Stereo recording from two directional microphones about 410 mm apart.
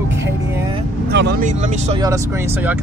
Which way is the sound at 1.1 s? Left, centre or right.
Right.